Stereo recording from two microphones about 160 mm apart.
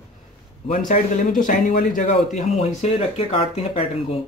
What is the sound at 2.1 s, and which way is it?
Speech, 40° left (ahead or behind).